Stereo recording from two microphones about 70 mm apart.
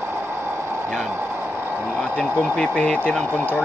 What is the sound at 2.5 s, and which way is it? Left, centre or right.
Speech, centre.